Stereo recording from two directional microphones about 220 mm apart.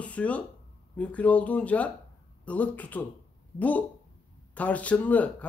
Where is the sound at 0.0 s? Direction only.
5° left (ahead or behind).